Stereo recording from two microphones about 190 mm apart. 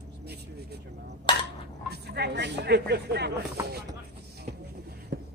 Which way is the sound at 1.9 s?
60° right (ahead or behind).